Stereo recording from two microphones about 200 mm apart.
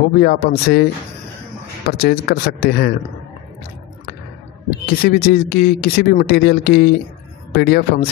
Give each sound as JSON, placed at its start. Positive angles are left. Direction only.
{"t": 0.2, "sound": "speech", "side_deg": 50}
{"t": 1.9, "sound": "speech", "side_deg": 50}
{"t": 5.0, "sound": "speech", "side_deg": 50}